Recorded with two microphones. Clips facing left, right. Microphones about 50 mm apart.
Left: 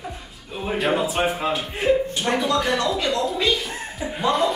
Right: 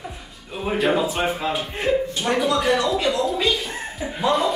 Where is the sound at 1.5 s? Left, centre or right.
Centre.